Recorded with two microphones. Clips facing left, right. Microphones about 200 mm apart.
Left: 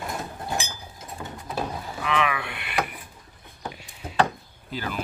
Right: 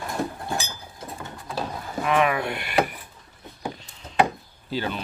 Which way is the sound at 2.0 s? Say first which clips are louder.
Right 5 dB; 45° right (ahead or behind).